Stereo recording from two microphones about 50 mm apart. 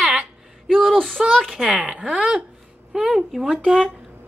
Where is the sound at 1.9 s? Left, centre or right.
Right.